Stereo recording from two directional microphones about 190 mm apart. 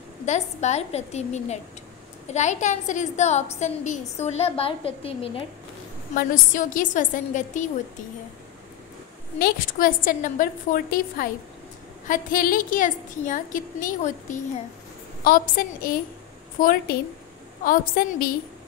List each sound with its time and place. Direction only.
0.2 s a woman's voice: 35° left (ahead or behind)
6.1 s a woman's voice: 45° left (ahead or behind)
9.4 s a woman's voice: 45° left (ahead or behind)